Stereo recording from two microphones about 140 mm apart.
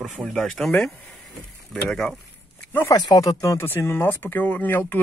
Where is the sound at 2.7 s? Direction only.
15° left (ahead or behind).